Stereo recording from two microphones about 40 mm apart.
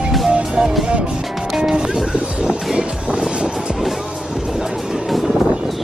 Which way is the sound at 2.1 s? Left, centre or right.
Right.